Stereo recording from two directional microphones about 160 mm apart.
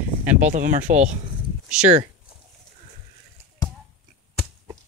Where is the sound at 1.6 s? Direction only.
5° right (ahead or behind).